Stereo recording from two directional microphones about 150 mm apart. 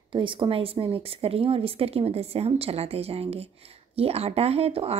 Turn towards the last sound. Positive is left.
turn(degrees=-40)  # may be behind; listen again after turning